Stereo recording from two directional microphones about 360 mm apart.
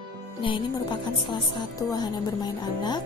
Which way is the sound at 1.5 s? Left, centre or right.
Centre.